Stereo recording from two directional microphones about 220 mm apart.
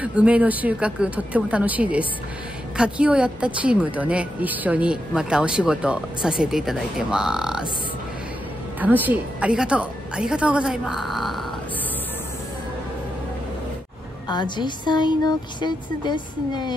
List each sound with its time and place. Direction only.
0.0 s a woman's voice: 5° right (ahead or behind)
8.7 s a woman's voice: 10° right (ahead or behind)
14.2 s speech: 20° left (ahead or behind)